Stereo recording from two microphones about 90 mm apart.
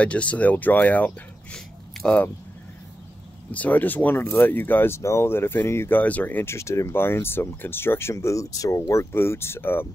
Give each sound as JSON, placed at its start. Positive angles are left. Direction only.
{"t": 0.0, "sound": "speech", "side_deg": 15}
{"t": 2.0, "sound": "a sound", "side_deg": 10}
{"t": 3.5, "sound": "speech", "side_deg": 20}